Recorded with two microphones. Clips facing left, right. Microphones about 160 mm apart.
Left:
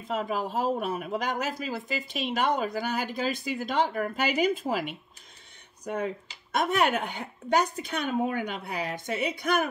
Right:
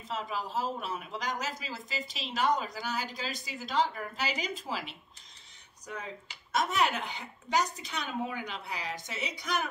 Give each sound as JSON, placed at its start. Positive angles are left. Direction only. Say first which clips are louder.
{"t": 0.1, "sound": "speech", "louder": "left 6 dB", "side_deg": 50}